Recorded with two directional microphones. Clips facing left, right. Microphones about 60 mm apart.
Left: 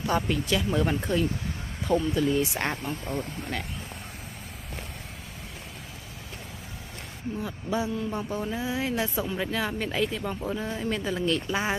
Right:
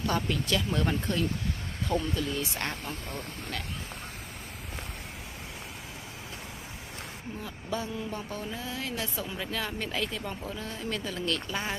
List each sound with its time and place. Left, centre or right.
0.0 s speech: centre
2.8 s speech: centre
7.4 s speech: centre
10.4 s speech: left